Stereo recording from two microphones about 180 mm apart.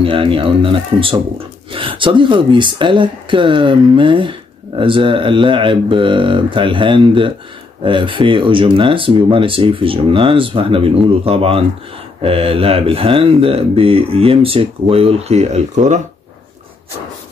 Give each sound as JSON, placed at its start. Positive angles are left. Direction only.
{"t": 0.0, "sound": "speech", "side_deg": -30}